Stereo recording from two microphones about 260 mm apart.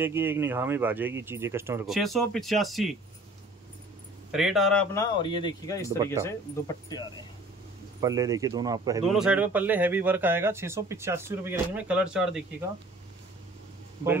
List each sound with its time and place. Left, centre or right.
0.0 s speech: centre
4.3 s speech: centre
4.9 s speech: centre
8.0 s speech: centre
9.0 s speech: centre